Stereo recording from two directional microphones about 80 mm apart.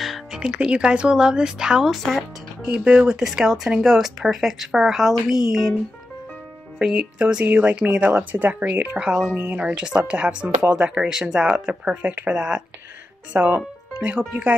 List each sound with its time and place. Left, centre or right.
0.0 s speech: centre
2.6 s speech: centre
6.8 s speech: centre